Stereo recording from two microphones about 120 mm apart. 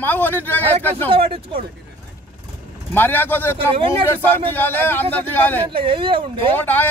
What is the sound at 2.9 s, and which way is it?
Speech, 15° left (ahead or behind).